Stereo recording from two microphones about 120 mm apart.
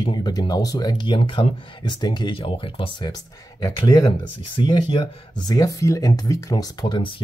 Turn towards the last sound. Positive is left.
turn(degrees=45)  # may be behind; listen again after turning